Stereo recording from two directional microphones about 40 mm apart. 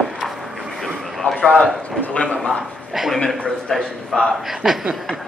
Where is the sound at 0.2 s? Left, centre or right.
Centre.